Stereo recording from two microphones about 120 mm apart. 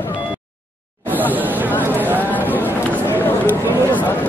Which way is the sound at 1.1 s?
15° right (ahead or behind).